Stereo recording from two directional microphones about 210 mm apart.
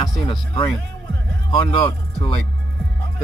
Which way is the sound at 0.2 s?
20° left (ahead or behind).